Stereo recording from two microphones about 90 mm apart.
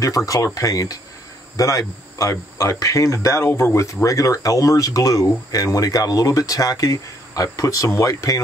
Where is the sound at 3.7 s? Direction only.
35° left (ahead or behind).